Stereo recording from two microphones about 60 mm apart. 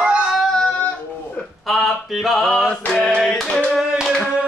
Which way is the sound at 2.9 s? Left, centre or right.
Centre.